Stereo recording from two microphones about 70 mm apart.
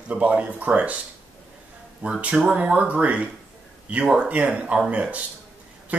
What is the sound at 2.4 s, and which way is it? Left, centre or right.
Speech, centre.